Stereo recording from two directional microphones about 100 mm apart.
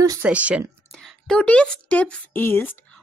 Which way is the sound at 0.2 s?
15° right (ahead or behind).